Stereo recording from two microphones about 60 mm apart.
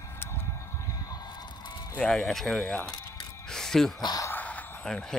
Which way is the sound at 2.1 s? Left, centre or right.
Centre.